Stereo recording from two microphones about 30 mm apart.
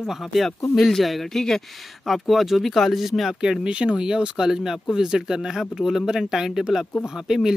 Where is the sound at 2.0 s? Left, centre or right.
Centre.